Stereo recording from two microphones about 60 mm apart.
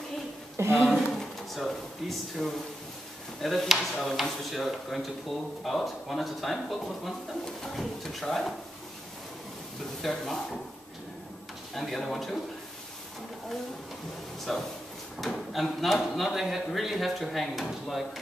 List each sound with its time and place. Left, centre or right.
0.8 s a sound: centre
1.6 s speech: centre
10.0 s speech: centre
11.7 s speech: centre
14.5 s speech: centre